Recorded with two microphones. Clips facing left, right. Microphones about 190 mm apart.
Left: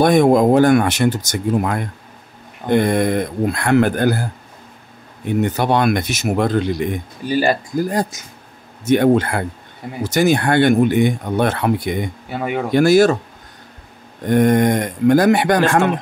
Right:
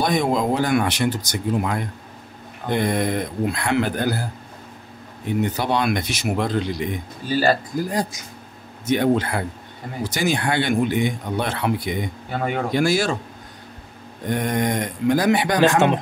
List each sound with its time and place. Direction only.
0.0 s speech: 55° left (ahead or behind)
5.4 s speech: 55° left (ahead or behind)
7.2 s speech: 15° left (ahead or behind)
7.9 s speech: 50° left (ahead or behind)
12.3 s speech: 10° left (ahead or behind)
12.7 s speech: 45° left (ahead or behind)
14.3 s speech: 50° left (ahead or behind)